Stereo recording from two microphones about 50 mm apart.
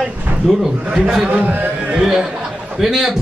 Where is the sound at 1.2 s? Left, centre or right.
Right.